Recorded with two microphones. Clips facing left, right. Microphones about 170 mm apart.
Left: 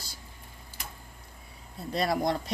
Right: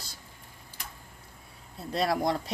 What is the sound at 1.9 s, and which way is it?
Speech, centre (ahead or behind).